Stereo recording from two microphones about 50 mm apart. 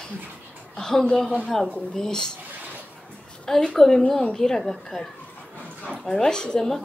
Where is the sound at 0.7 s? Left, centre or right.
Centre.